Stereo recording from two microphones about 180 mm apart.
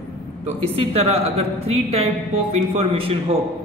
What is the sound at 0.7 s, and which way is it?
A man's voice, 35° right (ahead or behind).